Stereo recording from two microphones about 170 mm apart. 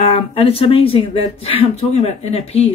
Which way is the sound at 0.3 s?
35° left (ahead or behind).